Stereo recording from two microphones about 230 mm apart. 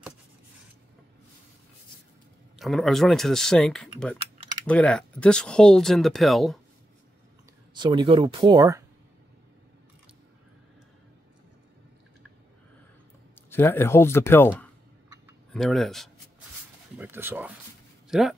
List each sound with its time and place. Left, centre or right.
2.6 s speech: centre
7.7 s speech: centre
13.5 s speech: centre
15.5 s speech: centre